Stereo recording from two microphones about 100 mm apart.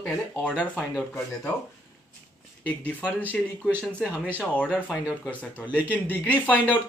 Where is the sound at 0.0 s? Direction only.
15° left (ahead or behind).